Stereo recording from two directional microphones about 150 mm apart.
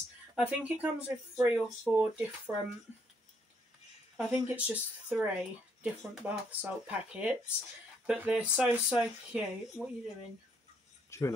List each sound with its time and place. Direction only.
0.4 s speech: 10° right (ahead or behind)
4.2 s speech: 10° right (ahead or behind)
11.1 s speech: 20° left (ahead or behind)